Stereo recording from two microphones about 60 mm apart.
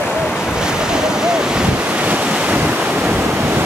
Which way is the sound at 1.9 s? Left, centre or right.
Right.